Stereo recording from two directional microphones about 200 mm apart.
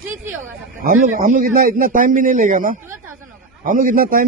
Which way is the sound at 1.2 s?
40° right (ahead or behind).